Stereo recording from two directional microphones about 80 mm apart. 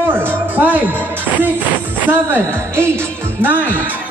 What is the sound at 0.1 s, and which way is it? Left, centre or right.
Music, right.